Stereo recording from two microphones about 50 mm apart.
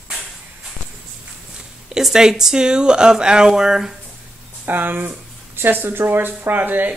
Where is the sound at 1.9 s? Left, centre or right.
Centre.